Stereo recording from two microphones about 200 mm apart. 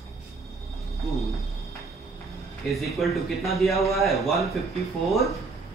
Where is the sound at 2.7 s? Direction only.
Centre (ahead or behind).